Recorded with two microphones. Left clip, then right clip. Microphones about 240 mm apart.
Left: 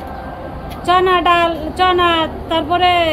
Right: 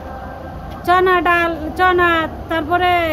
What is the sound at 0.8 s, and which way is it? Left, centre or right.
A woman's voice, centre.